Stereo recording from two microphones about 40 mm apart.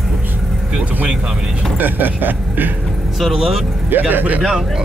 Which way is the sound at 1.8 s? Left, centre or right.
Right.